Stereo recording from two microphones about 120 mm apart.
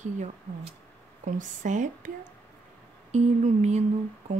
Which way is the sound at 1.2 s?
90° right.